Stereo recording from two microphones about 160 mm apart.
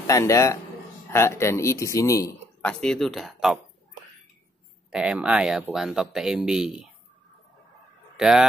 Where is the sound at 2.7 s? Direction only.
5° left (ahead or behind).